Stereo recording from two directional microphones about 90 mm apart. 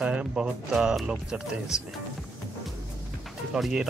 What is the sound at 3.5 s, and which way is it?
Speech, 5° right (ahead or behind).